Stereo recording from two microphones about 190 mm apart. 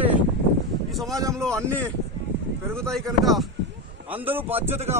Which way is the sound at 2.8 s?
Centre (ahead or behind).